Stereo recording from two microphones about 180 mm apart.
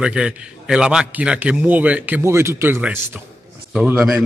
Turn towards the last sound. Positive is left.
turn(degrees=-5)  # may be behind; listen again after turning